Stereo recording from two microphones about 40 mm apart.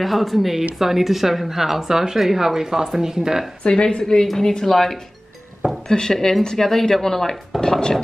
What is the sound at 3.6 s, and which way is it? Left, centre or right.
A woman's voice, left.